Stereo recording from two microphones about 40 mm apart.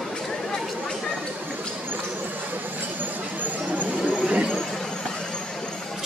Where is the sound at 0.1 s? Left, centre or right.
Centre.